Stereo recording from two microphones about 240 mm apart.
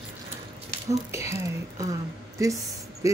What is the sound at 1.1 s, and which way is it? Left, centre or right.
Speech, centre.